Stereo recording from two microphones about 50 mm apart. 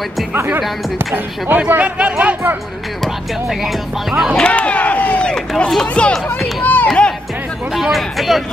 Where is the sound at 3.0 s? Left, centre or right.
Centre.